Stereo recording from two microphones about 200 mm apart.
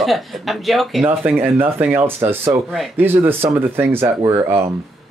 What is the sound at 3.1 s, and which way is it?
Speech, 10° right (ahead or behind).